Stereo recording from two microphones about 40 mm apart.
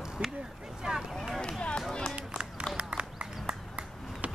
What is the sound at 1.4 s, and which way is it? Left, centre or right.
Run, left.